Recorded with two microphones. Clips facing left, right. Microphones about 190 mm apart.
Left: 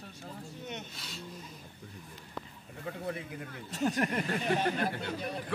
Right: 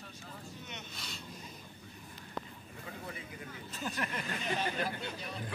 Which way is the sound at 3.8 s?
45° left (ahead or behind).